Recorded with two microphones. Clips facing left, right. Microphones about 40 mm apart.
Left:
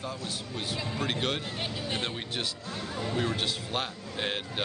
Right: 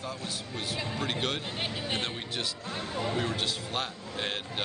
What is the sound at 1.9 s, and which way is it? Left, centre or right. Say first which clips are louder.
Speech: even; centre.